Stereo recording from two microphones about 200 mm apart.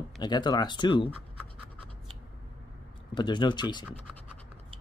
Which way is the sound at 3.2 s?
25° left (ahead or behind).